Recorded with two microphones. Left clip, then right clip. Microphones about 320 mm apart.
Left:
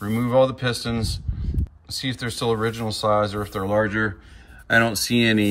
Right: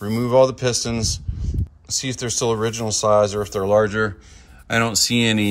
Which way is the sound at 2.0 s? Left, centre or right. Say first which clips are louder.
Right 2 dB; centre.